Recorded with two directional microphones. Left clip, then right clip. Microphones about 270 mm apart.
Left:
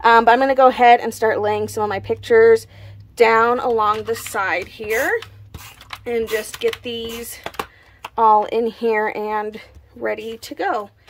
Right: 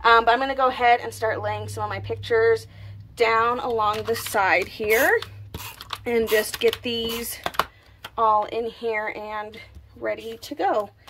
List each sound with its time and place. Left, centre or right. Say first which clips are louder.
0.0 s a woman's voice: left 5 dB; centre
4.1 s speech: even; centre
8.2 s a woman's voice: left 6 dB; centre